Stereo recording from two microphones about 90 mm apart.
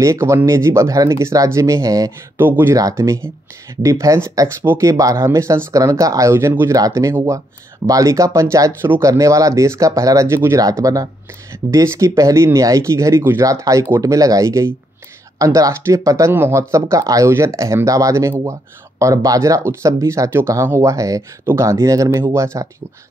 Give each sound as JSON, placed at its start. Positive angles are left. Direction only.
{"t": 0.0, "sound": "speech", "side_deg": -35}
{"t": 2.3, "sound": "speech", "side_deg": -25}
{"t": 2.7, "sound": "speech", "side_deg": -40}
{"t": 3.0, "sound": "speech", "side_deg": -25}